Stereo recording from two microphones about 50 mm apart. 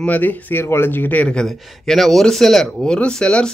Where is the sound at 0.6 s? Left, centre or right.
Left.